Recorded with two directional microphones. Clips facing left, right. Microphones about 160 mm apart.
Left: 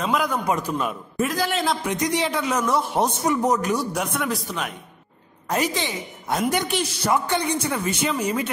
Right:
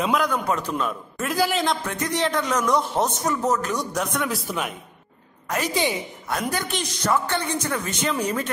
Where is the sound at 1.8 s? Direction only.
15° left (ahead or behind); by 4.7 s centre (ahead or behind).